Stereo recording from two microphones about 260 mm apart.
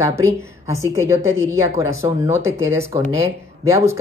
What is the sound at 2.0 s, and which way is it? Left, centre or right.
Speech, centre.